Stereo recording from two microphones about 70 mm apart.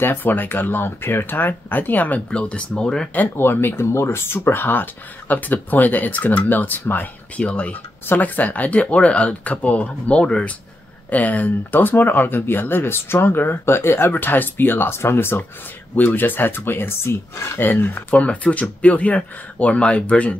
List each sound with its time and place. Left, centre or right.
0.0 s speech: left; by 3.1 s centre
3.2 s speech: left